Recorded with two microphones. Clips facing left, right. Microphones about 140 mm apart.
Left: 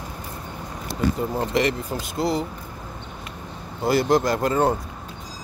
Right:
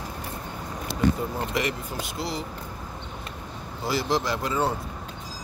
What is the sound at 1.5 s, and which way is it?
Speech, 35° left (ahead or behind).